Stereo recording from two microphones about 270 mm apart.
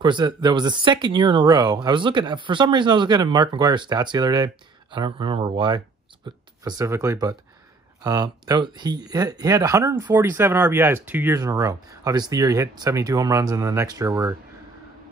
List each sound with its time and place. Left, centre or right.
0.0 s speech: centre